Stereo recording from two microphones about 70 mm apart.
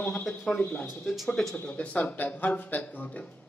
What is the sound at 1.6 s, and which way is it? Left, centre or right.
Speech, centre.